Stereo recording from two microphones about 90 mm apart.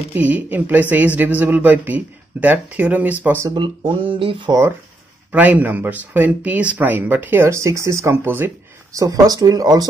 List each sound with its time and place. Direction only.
0.1 s speech: 20° right (ahead or behind)
3.5 s speech: 60° right (ahead or behind); by 4.5 s 80° right
5.3 s speech: 15° right (ahead or behind)
7.4 s speech: 35° right (ahead or behind)
8.9 s speech: 40° right (ahead or behind)